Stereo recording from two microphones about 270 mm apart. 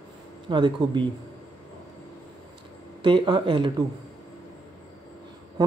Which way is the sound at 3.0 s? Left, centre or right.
Centre.